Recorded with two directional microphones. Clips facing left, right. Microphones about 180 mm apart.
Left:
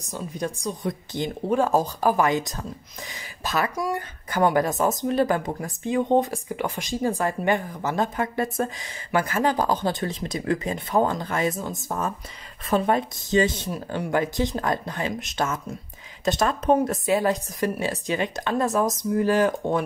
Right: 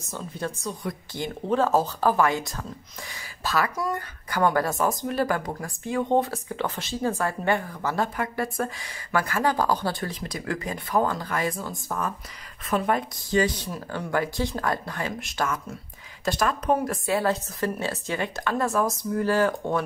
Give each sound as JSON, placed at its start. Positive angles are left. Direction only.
{"t": 0.0, "sound": "speech", "side_deg": 15}